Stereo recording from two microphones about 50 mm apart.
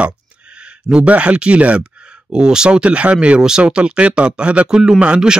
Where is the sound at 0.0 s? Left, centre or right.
Right.